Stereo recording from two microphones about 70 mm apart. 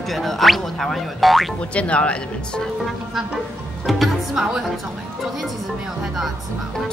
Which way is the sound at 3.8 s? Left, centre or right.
Centre.